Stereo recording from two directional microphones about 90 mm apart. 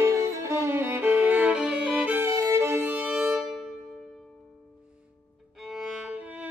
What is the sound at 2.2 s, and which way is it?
Violin, 30° right (ahead or behind).